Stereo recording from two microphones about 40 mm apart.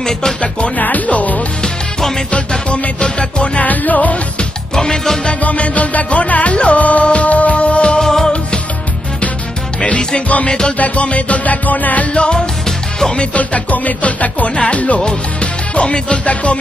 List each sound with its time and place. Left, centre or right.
0.7 s speech: left
1.6 s music: centre
2.3 s music: left
3.5 s music: left
4.7 s music: centre
5.4 s music: left
8.0 s music: centre
9.8 s music: left
10.2 s music: left
12.6 s music: centre
13.2 s music: left
15.7 s music: left